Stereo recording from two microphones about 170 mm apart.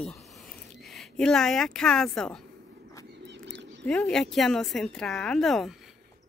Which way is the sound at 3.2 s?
90° right.